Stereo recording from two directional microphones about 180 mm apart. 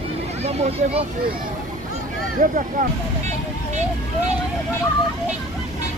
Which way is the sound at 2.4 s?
45° right (ahead or behind).